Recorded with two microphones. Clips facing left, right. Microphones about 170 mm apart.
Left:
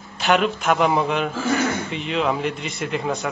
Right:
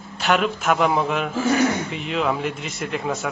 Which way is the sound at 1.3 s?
15° right (ahead or behind).